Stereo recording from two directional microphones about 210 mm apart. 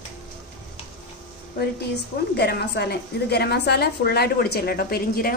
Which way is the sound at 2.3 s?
50° left (ahead or behind).